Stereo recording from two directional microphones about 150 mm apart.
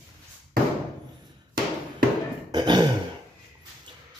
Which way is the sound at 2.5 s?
30° right (ahead or behind).